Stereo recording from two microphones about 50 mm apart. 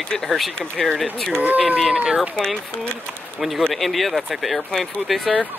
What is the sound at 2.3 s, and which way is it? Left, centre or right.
Speech, centre.